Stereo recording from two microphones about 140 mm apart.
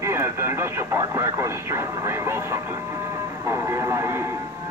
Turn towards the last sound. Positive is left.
turn(degrees=-20)  # may be behind; listen again after turning